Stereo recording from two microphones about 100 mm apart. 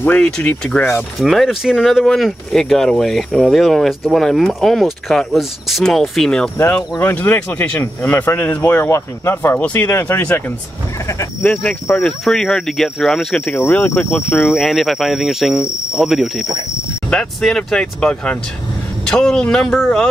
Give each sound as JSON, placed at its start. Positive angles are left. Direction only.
{"t": 0.0, "sound": "speech", "side_deg": 15}
{"t": 1.2, "sound": "speech", "side_deg": 0}
{"t": 6.6, "sound": "speech", "side_deg": 20}
{"t": 11.4, "sound": "speech", "side_deg": 10}
{"t": 13.5, "sound": "speech", "side_deg": 15}
{"t": 14.5, "sound": "speech", "side_deg": 0}